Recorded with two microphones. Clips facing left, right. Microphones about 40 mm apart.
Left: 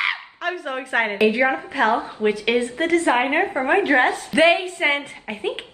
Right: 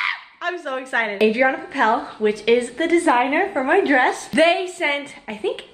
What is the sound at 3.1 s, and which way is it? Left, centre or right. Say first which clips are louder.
A woman's voice: right 1 dB; centre.